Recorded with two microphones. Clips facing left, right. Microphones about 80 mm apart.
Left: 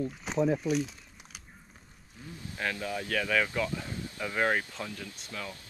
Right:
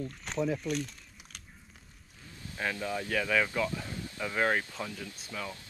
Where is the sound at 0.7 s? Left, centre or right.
Centre.